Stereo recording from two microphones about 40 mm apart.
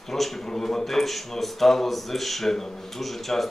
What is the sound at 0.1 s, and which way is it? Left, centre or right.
A man's voice, centre.